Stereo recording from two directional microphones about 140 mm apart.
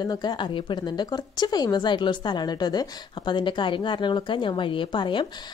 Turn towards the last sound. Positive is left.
turn(degrees=35)  # may be behind; listen again after turning